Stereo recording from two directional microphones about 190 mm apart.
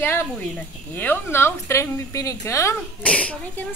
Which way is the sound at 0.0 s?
10° left (ahead or behind).